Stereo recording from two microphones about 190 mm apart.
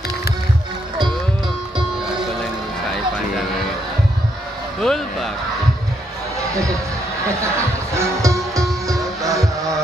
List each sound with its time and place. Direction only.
4.8 s speech: centre (ahead or behind)
6.5 s speech: 15° right (ahead or behind)
7.2 s music: 15° right (ahead or behind)